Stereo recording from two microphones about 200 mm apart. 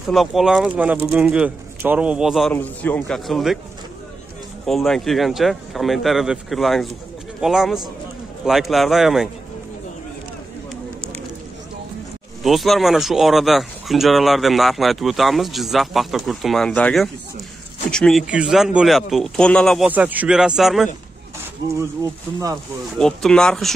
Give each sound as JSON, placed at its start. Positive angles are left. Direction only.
{"t": 0.1, "sound": "speech", "side_deg": 0}
{"t": 4.6, "sound": "speech", "side_deg": 0}
{"t": 12.4, "sound": "speech", "side_deg": 0}
{"t": 19.9, "sound": "speech", "side_deg": -10}
{"t": 22.0, "sound": "speech", "side_deg": -20}
{"t": 22.9, "sound": "speech", "side_deg": 5}